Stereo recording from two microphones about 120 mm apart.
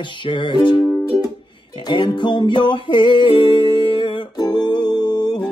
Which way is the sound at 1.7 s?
40° left (ahead or behind).